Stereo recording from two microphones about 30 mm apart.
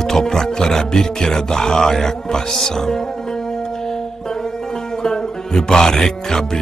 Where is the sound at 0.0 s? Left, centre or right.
Centre.